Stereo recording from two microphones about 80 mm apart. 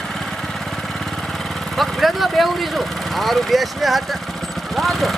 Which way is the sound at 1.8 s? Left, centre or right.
Centre.